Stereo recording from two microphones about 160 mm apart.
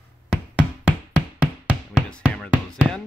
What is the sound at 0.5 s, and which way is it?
Music, 5° right (ahead or behind).